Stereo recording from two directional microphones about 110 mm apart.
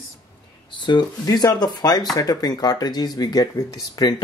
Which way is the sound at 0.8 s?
40° left (ahead or behind).